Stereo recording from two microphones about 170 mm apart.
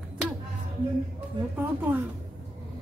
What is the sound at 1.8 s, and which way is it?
Speech, 10° right (ahead or behind).